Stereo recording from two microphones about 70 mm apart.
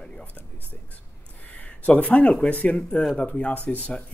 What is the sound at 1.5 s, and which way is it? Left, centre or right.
Speech, left.